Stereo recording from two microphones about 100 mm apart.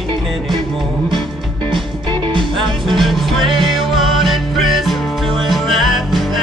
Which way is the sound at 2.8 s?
Centre (ahead or behind).